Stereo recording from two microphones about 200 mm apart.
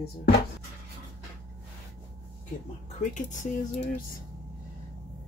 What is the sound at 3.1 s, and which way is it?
Speech, 40° left (ahead or behind).